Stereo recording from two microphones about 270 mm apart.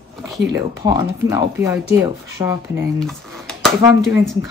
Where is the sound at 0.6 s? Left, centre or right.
Centre.